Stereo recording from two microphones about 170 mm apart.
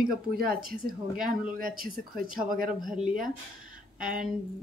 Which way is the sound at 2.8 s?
5° right (ahead or behind).